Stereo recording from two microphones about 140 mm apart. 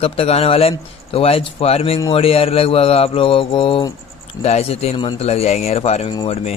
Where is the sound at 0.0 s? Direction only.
45° left (ahead or behind).